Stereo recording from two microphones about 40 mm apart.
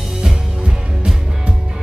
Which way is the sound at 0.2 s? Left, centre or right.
Centre.